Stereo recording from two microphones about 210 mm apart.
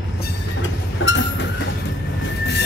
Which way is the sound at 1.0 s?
65° left (ahead or behind).